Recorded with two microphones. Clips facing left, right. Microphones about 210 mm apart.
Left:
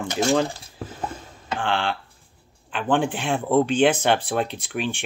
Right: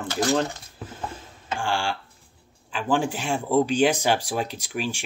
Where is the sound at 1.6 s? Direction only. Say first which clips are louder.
Left 2 dB; 10° right (ahead or behind).